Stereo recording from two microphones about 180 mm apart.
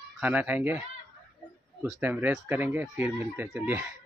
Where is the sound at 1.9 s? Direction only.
10° right (ahead or behind).